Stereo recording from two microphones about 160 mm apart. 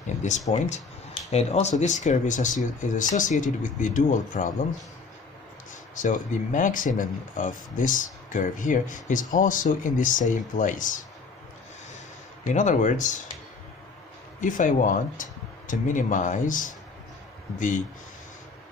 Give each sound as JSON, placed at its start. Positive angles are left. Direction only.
{"t": 0.0, "sound": "speech", "side_deg": 50}
{"t": 5.9, "sound": "speech", "side_deg": 55}
{"t": 12.5, "sound": "speech", "side_deg": 50}
{"t": 14.4, "sound": "speech", "side_deg": 55}